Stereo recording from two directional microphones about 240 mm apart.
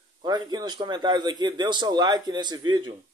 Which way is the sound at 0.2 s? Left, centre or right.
Centre.